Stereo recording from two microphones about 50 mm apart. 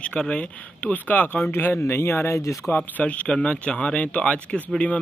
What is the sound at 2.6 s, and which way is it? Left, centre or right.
Speech, left.